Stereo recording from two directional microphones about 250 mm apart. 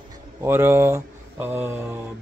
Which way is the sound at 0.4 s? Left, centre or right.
Centre.